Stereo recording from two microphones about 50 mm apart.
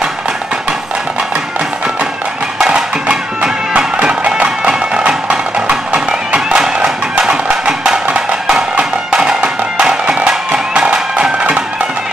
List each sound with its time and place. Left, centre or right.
2.6 s music: centre